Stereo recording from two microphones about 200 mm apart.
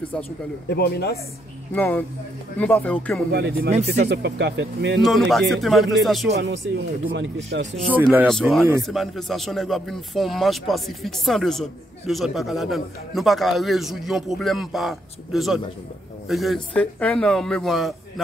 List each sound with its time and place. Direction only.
0.7 s speech: 55° left (ahead or behind)
1.7 s speech: 10° left (ahead or behind)
3.3 s speech: 50° right (ahead or behind)
5.0 s speech: centre (ahead or behind)
6.3 s speech: 55° right (ahead or behind)
8.3 s speech: centre (ahead or behind)